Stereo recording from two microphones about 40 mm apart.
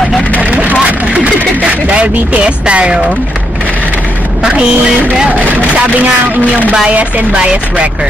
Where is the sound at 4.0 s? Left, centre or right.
Right.